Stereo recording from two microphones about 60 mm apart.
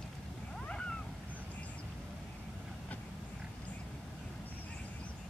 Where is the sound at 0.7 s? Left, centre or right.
Centre.